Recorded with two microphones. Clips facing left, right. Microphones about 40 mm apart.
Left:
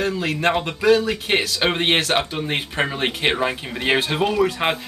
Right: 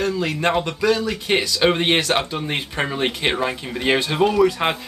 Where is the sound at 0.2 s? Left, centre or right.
Centre.